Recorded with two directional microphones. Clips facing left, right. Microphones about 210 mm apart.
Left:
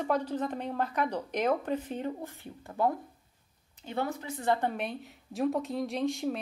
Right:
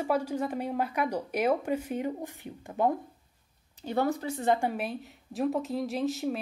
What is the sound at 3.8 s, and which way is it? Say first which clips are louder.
Speech: right 5 dB; 40° right (ahead or behind).